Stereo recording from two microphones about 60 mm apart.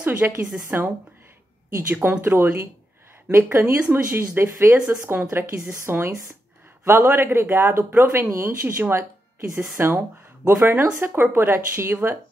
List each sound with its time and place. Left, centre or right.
0.0 s a woman's voice: right
0.4 s a woman's voice: centre
0.7 s speech: right
9.9 s speech: right